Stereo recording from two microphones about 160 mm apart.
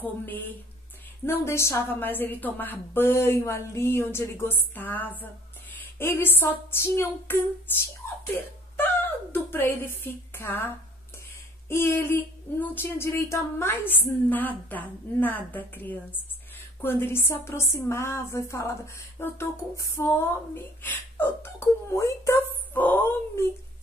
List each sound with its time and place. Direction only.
0.0 s speech: 10° left (ahead or behind)
8.0 s a sound: 15° left (ahead or behind)
8.7 s a woman's voice: 10° left (ahead or behind)
11.7 s speech: 15° left (ahead or behind)